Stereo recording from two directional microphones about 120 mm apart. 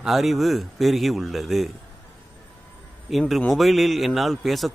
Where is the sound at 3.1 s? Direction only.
Centre (ahead or behind).